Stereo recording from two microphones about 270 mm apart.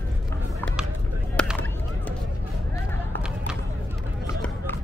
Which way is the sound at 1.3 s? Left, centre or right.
Centre.